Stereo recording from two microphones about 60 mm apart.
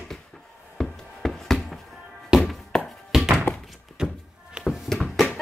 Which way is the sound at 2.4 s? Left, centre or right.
Centre.